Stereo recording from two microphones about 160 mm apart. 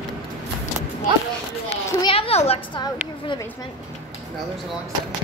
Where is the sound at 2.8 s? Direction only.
25° left (ahead or behind).